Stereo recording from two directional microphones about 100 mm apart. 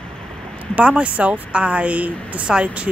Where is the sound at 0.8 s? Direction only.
10° right (ahead or behind).